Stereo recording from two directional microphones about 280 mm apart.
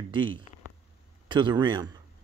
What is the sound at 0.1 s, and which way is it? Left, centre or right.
Speech, centre.